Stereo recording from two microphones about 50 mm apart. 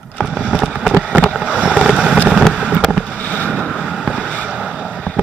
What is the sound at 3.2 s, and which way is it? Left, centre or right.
Vehicle, left.